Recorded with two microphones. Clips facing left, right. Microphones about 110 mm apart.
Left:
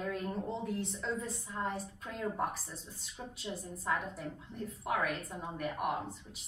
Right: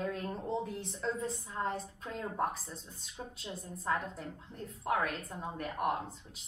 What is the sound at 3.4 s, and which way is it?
A woman's voice, 5° left (ahead or behind).